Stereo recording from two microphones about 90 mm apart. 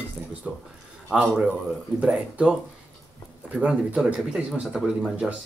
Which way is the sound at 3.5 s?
5° right (ahead or behind).